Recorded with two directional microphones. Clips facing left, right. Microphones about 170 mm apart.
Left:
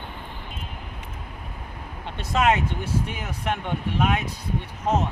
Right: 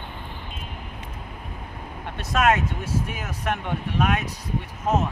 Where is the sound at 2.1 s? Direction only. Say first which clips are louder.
Even; 15° left (ahead or behind).